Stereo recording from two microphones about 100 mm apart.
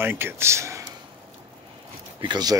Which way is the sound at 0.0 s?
20° right (ahead or behind).